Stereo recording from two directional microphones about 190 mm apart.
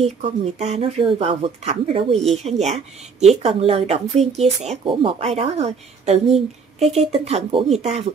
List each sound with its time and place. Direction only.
0.0 s speech: 35° right (ahead or behind)